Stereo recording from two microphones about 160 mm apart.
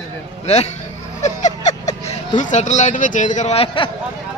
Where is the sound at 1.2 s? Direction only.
50° left (ahead or behind).